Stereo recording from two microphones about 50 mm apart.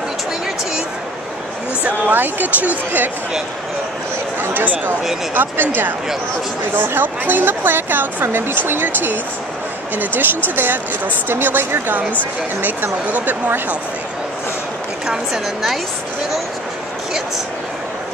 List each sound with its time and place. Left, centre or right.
1.9 s speech: right
4.4 s speech: right
10.5 s speech: right
15.0 s a woman's voice: centre